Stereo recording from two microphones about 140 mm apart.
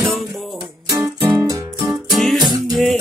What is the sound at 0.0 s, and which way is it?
Music, centre (ahead or behind).